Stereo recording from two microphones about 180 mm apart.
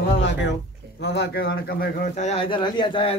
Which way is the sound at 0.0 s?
75° left (ahead or behind).